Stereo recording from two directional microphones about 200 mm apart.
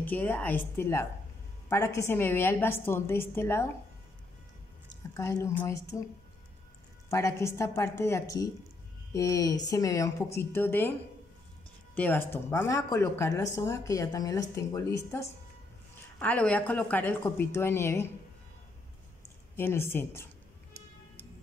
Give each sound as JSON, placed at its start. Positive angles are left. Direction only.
{"t": 0.0, "sound": "speech", "side_deg": 10}
{"t": 5.1, "sound": "speech", "side_deg": 15}
{"t": 7.1, "sound": "speech", "side_deg": 15}
{"t": 19.5, "sound": "speech", "side_deg": 10}